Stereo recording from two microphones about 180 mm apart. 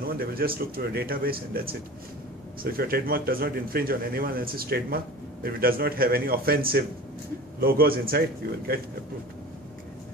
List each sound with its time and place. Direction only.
0.2 s a man's voice: 55° right (ahead or behind)